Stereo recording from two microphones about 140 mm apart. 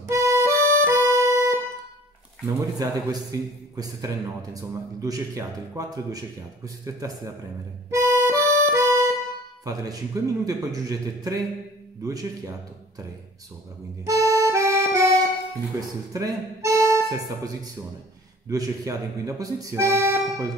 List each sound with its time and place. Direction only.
0.0 s music: 20° right (ahead or behind)
2.4 s a man's voice: 25° right (ahead or behind)
7.9 s music: 20° right (ahead or behind)
9.7 s a man's voice: 25° right (ahead or behind)
14.0 s accordion: 25° right (ahead or behind)
15.7 s speech: 25° right (ahead or behind)
18.5 s a man's voice: 25° right (ahead or behind)